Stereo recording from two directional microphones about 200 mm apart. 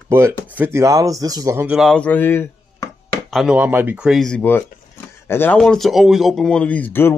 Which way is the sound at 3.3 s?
5° right (ahead or behind).